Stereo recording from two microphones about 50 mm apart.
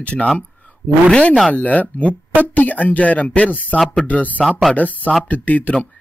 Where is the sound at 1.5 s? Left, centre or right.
Left.